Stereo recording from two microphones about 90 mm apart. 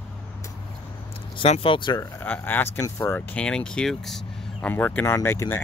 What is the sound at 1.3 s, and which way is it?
Speech, 80° left.